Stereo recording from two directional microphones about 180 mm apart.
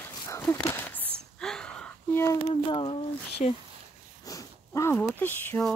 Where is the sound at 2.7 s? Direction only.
30° left (ahead or behind).